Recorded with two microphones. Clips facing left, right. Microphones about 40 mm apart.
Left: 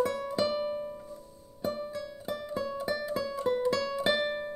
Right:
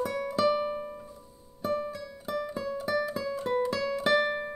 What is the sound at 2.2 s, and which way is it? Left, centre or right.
Music, centre.